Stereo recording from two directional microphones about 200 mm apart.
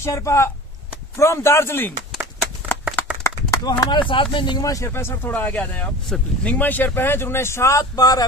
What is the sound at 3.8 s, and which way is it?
A man's voice, 25° left (ahead or behind).